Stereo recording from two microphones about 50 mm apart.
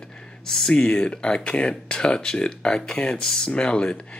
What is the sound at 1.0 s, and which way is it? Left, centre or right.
Speech, left.